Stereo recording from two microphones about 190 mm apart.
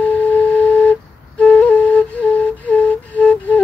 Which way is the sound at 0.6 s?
5° left (ahead or behind).